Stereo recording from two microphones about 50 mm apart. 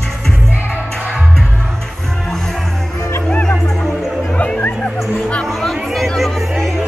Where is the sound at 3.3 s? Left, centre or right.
Centre.